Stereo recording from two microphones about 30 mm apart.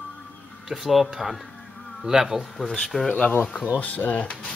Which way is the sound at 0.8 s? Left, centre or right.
Centre.